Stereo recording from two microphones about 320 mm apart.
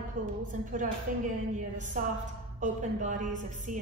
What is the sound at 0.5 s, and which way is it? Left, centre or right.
A woman's voice, right.